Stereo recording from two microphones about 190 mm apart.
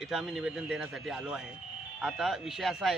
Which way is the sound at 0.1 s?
5° right (ahead or behind).